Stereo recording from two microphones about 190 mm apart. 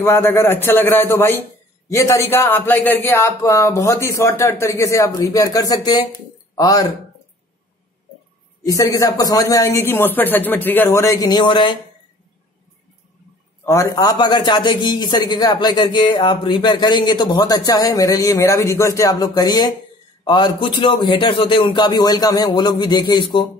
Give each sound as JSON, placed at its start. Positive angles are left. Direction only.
{"t": 0.0, "sound": "speech", "side_deg": 10}
{"t": 8.6, "sound": "speech", "side_deg": 15}
{"t": 13.7, "sound": "a man's voice", "side_deg": 15}